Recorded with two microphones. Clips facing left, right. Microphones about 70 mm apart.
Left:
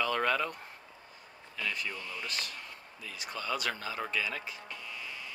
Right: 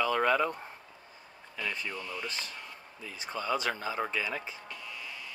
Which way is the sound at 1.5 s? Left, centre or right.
Centre.